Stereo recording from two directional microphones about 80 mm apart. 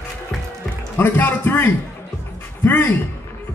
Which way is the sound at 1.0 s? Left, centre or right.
Left.